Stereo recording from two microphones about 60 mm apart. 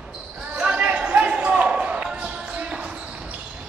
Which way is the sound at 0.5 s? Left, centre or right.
Right.